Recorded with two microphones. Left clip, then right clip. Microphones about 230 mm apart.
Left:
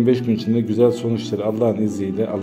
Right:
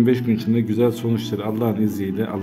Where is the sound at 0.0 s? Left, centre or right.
Centre.